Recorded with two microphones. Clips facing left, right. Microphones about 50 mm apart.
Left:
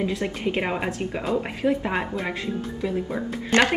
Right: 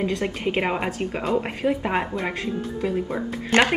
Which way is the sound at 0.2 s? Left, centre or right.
Centre.